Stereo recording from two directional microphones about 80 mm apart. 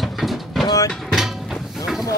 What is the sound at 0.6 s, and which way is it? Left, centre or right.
Vehicle, left.